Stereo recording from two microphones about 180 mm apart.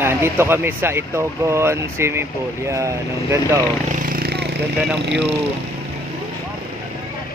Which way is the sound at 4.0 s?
55° right (ahead or behind).